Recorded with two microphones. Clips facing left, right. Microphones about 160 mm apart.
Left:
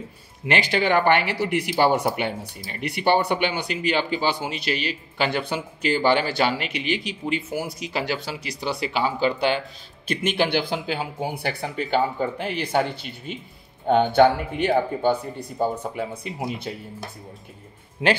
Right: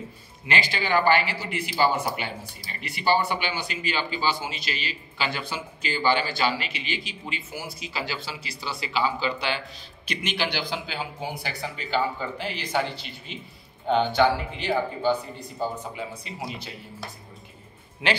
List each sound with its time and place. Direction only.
0.5 s speech: 60° left (ahead or behind)